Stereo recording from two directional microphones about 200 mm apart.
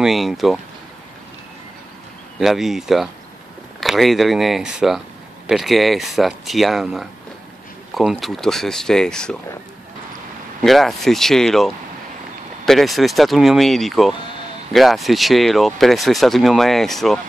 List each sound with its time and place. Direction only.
0.0 s speech: centre (ahead or behind)
2.4 s speech: centre (ahead or behind)
10.6 s speech: centre (ahead or behind)